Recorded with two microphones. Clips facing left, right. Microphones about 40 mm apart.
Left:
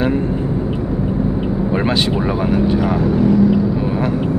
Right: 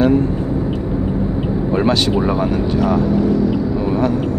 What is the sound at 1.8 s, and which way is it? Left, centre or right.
Speech, centre.